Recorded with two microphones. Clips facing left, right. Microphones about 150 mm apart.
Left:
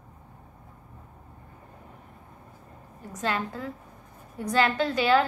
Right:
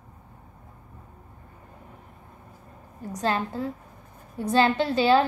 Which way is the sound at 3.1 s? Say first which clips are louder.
Right 3 dB; 30° right (ahead or behind).